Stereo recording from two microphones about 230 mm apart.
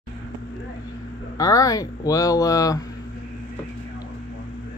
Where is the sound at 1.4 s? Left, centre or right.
Centre.